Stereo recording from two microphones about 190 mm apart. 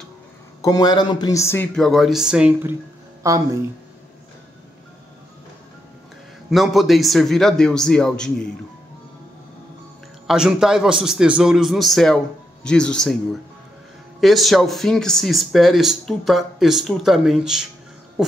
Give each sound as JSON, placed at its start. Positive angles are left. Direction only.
{"t": 0.6, "sound": "a man's voice", "side_deg": 20}
{"t": 1.8, "sound": "speech", "side_deg": 0}
{"t": 3.2, "sound": "speech", "side_deg": -15}
{"t": 6.5, "sound": "speech", "side_deg": 0}
{"t": 10.2, "sound": "speech", "side_deg": -5}